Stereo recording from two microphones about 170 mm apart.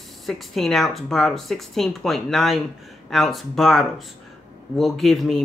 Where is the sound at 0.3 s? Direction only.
Centre (ahead or behind).